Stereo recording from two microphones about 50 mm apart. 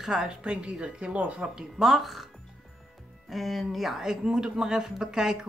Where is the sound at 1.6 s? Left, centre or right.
Centre.